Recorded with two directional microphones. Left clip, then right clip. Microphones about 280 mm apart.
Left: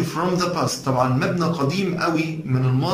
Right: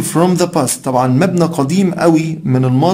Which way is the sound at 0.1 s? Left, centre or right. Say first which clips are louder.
Right 11 dB; right.